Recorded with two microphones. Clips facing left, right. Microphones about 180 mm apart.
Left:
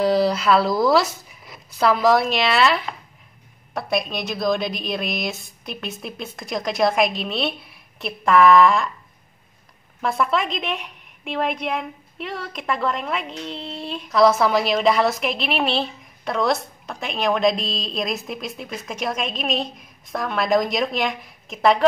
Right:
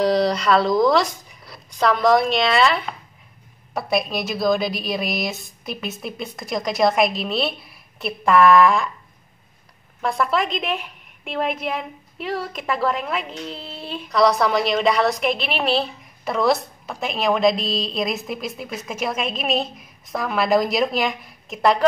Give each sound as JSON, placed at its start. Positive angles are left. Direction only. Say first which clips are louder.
{"t": 0.0, "sound": "a woman's voice", "louder": "even", "side_deg": 5}
{"t": 10.0, "sound": "a woman's voice", "louder": "even", "side_deg": 0}